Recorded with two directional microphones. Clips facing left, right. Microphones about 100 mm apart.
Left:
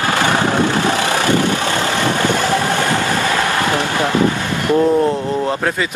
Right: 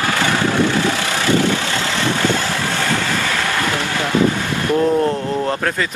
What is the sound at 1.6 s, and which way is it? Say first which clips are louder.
Vehicle: left 4 dB; 50° left (ahead or behind).